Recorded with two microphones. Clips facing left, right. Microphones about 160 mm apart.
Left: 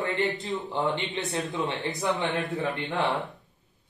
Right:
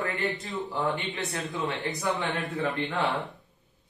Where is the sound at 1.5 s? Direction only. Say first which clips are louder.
Right 1 dB; 20° left (ahead or behind).